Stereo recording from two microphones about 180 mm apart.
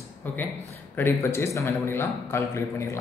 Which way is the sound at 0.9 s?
15° left (ahead or behind).